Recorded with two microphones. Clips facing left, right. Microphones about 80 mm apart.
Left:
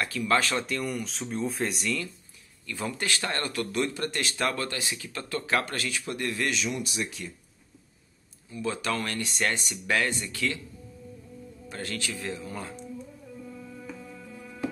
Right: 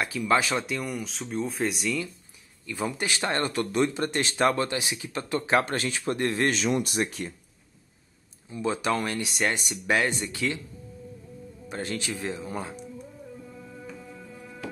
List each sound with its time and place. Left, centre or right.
0.0 s speech: centre
2.6 s speech: centre; by 7.3 s right
8.5 s speech: right
11.7 s speech: right